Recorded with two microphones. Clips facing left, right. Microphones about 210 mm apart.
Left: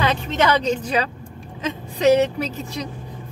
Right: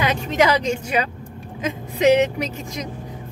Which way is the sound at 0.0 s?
10° right (ahead or behind).